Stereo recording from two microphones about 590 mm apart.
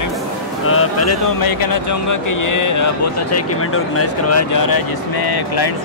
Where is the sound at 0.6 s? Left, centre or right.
Left.